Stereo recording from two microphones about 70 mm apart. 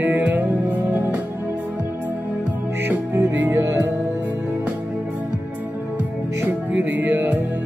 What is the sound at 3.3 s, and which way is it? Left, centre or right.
Music, right.